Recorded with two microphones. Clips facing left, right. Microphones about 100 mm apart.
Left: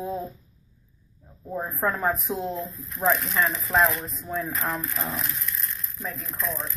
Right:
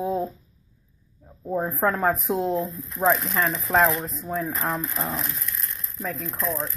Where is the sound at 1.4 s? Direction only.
20° right (ahead or behind).